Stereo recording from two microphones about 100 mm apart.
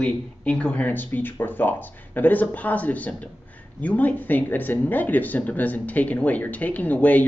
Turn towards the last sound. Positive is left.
turn(degrees=15)  # may be behind; listen again after turning